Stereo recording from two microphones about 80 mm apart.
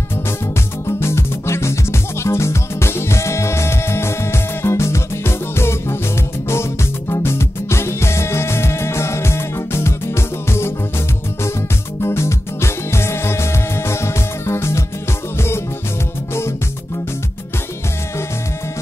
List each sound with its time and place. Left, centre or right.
0.8 s music: left
12.0 s music: left